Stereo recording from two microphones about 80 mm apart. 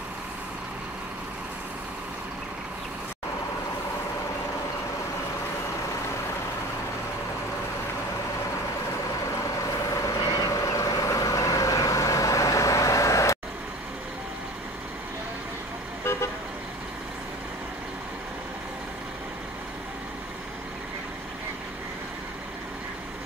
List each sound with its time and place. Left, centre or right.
10.0 s vehicle: left